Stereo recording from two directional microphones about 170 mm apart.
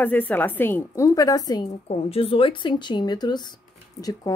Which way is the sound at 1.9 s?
35° left (ahead or behind).